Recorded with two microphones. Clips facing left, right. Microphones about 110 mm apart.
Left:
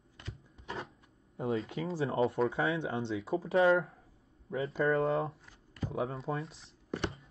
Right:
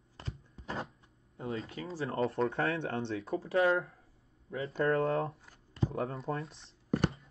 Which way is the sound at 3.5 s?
30° left (ahead or behind).